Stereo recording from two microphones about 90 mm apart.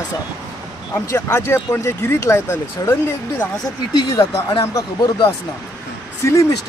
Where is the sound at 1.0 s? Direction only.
30° left (ahead or behind).